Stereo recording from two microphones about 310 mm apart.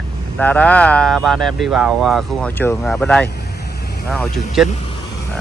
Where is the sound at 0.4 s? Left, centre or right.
Centre.